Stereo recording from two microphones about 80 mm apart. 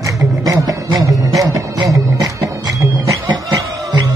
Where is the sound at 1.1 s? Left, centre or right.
Right.